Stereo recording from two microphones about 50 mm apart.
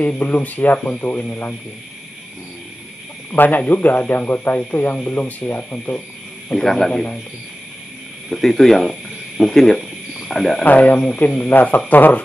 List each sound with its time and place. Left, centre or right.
0.0 s speech: left
3.3 s speech: left
6.5 s a man's voice: centre
8.3 s a man's voice: centre
10.6 s speech: left